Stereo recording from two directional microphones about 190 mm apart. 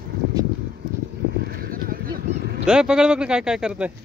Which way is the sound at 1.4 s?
50° right (ahead or behind).